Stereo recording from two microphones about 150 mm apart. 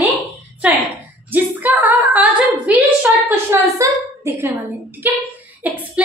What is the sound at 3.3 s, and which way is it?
A woman's voice, 20° right (ahead or behind).